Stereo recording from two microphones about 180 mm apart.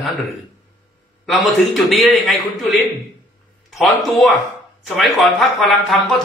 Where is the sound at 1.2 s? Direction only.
Centre (ahead or behind).